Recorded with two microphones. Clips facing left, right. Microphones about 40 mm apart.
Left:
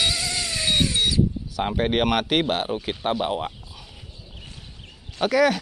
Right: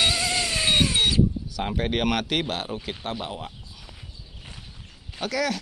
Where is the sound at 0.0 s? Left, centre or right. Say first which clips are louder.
Right 2 dB; centre.